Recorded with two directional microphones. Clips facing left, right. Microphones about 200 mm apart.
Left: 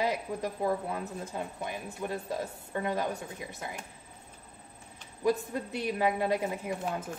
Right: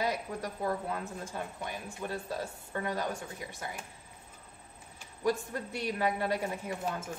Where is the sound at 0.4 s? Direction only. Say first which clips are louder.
Left 3 dB; 15° left (ahead or behind).